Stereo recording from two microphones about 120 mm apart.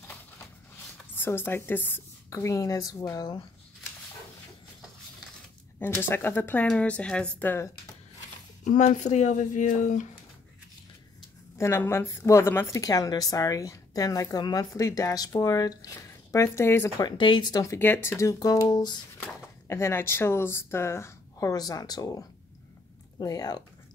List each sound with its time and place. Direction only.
1.1 s a woman's voice: 15° left (ahead or behind)
5.8 s a woman's voice: 20° left (ahead or behind)
8.6 s speech: 90° left
11.5 s a woman's voice: 20° left (ahead or behind)
17.0 s speech: 40° left (ahead or behind)
17.7 s a woman's voice: 15° left (ahead or behind); by 18.9 s 35° left (ahead or behind)
19.1 s speech: 20° left (ahead or behind)